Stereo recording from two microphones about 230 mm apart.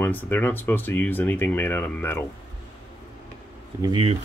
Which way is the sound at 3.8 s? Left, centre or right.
Right.